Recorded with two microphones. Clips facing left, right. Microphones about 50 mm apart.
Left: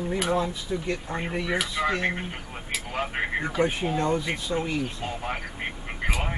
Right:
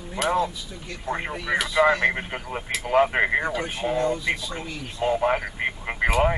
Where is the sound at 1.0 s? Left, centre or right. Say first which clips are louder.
Right 3 dB; right.